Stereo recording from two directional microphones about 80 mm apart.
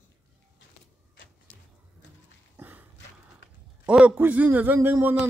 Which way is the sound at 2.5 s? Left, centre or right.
Right.